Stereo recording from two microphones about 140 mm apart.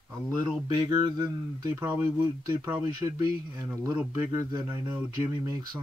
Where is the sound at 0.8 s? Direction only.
25° right (ahead or behind).